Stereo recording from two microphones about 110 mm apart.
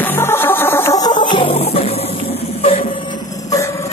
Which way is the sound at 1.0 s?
45° left (ahead or behind).